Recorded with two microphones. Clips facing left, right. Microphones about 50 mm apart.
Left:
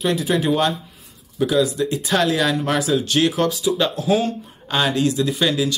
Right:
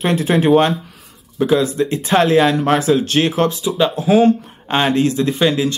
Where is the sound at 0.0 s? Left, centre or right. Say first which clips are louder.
Right 4 dB; right.